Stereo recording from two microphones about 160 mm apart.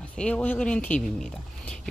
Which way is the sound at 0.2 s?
10° left (ahead or behind).